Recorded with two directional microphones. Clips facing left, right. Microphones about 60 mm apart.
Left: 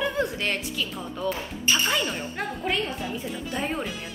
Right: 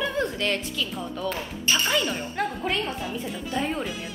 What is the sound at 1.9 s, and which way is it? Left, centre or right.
A woman's voice, centre.